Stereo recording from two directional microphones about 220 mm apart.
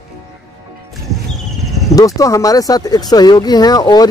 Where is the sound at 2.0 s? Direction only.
15° left (ahead or behind).